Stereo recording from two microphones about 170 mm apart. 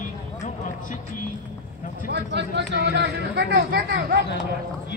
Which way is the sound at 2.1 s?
85° right.